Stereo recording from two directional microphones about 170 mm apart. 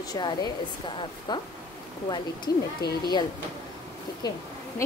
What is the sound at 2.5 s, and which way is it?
Speech, 20° left (ahead or behind).